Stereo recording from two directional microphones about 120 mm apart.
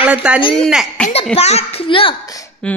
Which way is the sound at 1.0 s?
10° left (ahead or behind).